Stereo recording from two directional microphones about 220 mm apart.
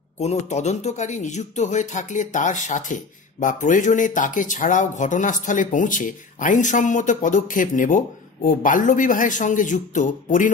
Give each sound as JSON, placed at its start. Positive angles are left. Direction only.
{"t": 0.2, "sound": "speech", "side_deg": 30}